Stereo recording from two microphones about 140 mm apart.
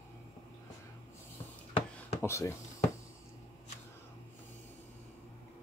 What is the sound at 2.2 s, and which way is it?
Speech, 20° left (ahead or behind).